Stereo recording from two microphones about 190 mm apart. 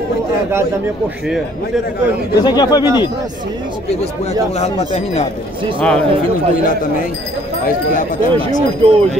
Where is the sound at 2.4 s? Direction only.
20° left (ahead or behind).